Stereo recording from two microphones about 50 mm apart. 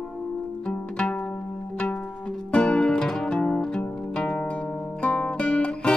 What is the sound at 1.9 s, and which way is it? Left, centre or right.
Music, left.